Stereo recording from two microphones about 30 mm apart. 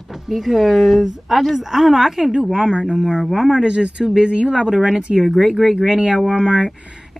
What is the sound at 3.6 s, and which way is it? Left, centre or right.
Speech, right.